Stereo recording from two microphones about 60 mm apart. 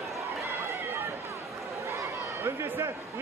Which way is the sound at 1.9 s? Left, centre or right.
Right.